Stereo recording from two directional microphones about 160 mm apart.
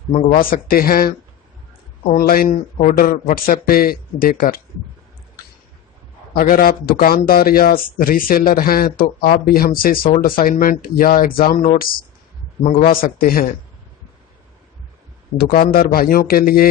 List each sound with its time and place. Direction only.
0.4 s a man's voice: 65° left (ahead or behind)
6.3 s a man's voice: 65° left (ahead or behind)
12.9 s a man's voice: 65° left (ahead or behind)
15.3 s a man's voice: 65° left (ahead or behind)